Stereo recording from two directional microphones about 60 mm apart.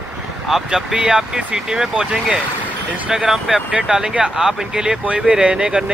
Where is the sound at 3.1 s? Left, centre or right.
Centre.